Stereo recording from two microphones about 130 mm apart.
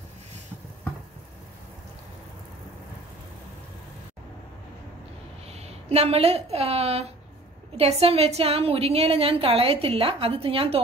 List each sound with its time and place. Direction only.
5.5 s a woman's voice: 55° right (ahead or behind)